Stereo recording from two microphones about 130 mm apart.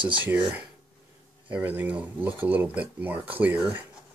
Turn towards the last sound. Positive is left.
turn(degrees=-10)  # may be behind; listen again after turning